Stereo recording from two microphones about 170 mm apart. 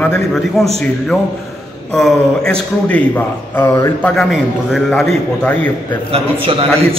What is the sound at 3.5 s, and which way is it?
Speech, 15° left (ahead or behind).